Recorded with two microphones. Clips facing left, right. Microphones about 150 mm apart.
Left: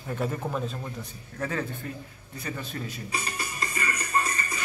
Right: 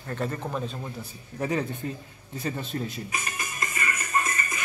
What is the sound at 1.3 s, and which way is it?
Speech, 20° right (ahead or behind).